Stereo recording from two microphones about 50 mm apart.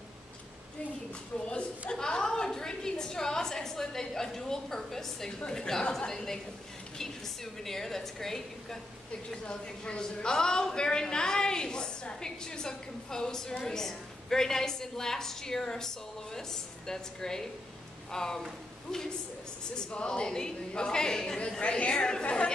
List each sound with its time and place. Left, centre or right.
1.5 s a sound: centre
5.5 s a woman's voice: centre
21.5 s a woman's voice: left